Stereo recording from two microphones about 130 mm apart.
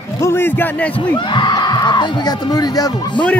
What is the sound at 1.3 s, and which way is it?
Speech, 35° left (ahead or behind).